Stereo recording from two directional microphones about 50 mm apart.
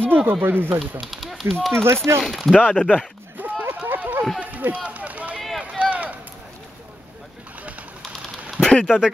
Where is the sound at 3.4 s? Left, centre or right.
Right.